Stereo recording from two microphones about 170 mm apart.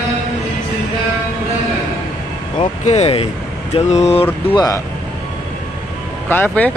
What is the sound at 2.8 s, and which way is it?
Speech, 40° left (ahead or behind).